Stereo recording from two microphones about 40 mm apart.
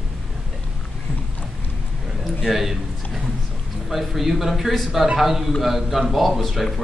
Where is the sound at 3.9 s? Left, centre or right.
Centre.